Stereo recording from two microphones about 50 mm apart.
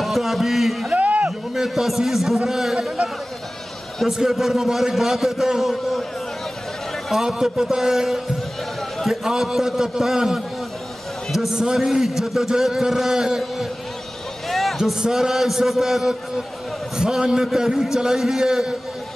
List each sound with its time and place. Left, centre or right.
0.0 s a man's voice: centre
0.9 s a sound: right
1.5 s a man's voice: centre
4.1 s a man's voice: centre
7.1 s a man's voice: centre
14.5 s a sound: centre
14.8 s a man's voice: centre
17.0 s a man's voice: centre